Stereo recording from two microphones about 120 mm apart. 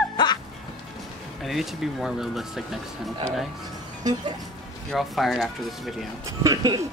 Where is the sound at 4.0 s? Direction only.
35° right (ahead or behind).